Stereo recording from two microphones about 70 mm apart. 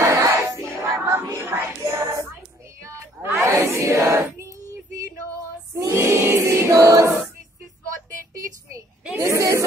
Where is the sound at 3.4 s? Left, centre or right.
Right.